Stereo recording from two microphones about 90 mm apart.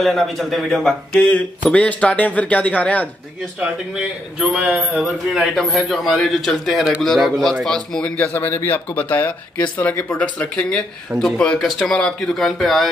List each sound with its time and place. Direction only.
0.0 s a man's voice: centre (ahead or behind); by 3.1 s 15° left (ahead or behind)
3.5 s a man's voice: 5° right (ahead or behind)
8.2 s a man's voice: 25° left (ahead or behind); by 12.9 s centre (ahead or behind)